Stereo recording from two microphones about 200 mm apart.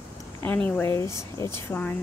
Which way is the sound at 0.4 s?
10° left (ahead or behind).